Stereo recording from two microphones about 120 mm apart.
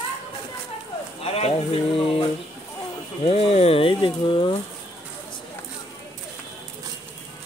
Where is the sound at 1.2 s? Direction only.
55° left (ahead or behind).